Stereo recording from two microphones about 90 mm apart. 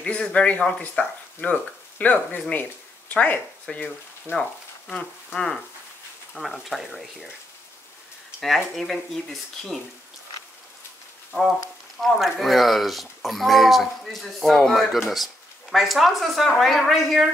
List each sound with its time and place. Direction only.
0.0 s speech: 10° left (ahead or behind)
8.4 s speech: centre (ahead or behind)
12.0 s speech: centre (ahead or behind)